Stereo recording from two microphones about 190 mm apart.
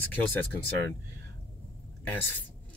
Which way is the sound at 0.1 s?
10° left (ahead or behind).